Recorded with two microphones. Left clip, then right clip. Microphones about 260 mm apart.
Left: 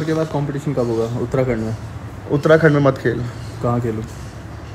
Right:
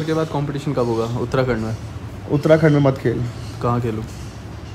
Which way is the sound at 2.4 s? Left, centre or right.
Right.